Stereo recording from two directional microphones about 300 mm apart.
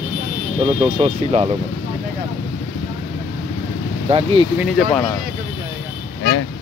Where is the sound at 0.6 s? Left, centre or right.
Centre.